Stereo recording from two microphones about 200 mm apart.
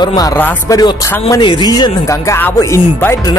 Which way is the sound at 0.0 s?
20° left (ahead or behind).